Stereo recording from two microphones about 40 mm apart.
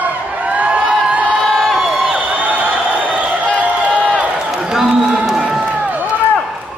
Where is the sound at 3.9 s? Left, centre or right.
Left.